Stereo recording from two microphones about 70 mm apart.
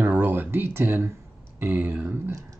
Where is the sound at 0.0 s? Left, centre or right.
Right.